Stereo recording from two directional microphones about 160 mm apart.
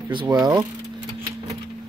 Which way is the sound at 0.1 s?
30° right (ahead or behind).